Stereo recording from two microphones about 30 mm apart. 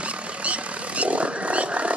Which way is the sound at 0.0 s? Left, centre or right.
Right.